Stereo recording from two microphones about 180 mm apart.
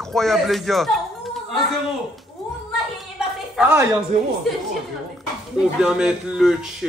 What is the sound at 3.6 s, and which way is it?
Speech, 15° right (ahead or behind).